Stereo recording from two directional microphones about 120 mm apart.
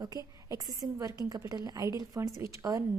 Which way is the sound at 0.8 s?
35° right (ahead or behind).